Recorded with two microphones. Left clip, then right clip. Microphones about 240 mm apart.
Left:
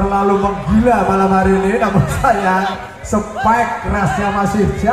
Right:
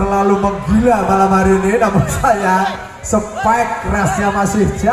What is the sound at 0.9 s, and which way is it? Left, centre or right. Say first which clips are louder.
A man's voice: right 1 dB; right.